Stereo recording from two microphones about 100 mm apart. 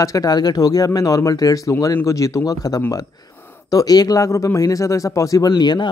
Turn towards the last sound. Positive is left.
turn(degrees=45)  # may be behind; listen again after turning